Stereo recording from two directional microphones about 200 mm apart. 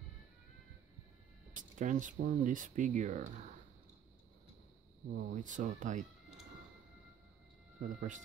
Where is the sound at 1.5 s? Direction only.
40° right (ahead or behind).